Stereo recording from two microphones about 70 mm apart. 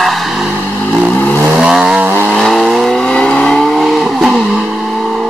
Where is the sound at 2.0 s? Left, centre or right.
Right.